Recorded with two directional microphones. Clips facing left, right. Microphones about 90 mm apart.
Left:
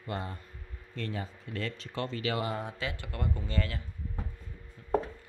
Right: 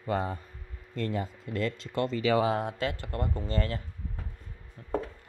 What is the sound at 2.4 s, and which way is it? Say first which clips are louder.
Speech: right 7 dB; 80° right.